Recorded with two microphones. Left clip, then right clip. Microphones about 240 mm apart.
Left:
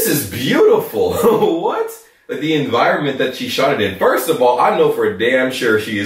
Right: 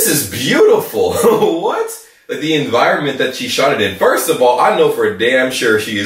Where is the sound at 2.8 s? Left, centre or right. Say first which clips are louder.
Right 1 dB; centre.